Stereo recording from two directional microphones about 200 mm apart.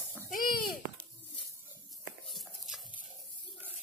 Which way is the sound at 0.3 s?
45° left (ahead or behind).